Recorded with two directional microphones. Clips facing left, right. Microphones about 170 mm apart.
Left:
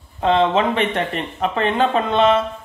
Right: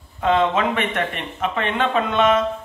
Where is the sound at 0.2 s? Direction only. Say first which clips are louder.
Left 2 dB; 30° left (ahead or behind).